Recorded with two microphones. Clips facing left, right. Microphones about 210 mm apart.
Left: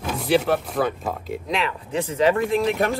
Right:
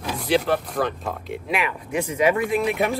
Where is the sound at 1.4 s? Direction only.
15° right (ahead or behind).